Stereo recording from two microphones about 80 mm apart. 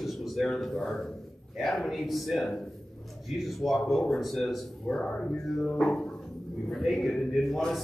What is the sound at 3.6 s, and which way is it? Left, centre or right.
A man's voice, centre.